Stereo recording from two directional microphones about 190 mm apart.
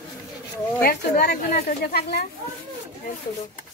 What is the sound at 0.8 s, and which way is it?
Speech, 55° left (ahead or behind).